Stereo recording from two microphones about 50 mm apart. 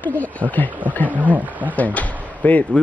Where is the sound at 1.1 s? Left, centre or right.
Right.